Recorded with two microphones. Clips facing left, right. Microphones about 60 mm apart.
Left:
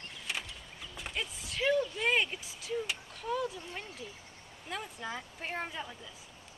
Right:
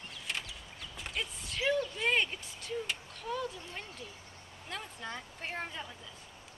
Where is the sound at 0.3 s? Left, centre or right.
Centre.